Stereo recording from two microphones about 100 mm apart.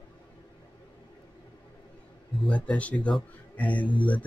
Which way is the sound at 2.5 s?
15° left (ahead or behind).